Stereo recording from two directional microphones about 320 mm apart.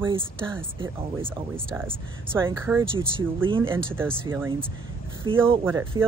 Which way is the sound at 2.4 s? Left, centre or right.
Centre.